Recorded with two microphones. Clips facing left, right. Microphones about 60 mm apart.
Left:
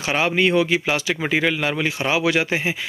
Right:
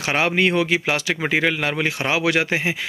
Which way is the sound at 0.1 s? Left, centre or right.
Right.